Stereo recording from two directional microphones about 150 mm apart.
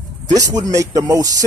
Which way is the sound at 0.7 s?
20° right (ahead or behind).